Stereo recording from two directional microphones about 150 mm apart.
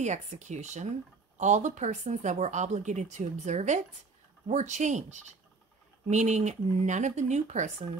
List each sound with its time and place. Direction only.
0.0 s speech: 50° right (ahead or behind)